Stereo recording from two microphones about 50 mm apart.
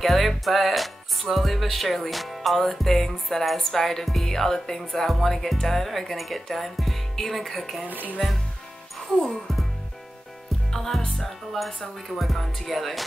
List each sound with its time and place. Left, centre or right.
0.0 s speech: centre
7.9 s speech: right
9.2 s speech: centre
10.7 s speech: centre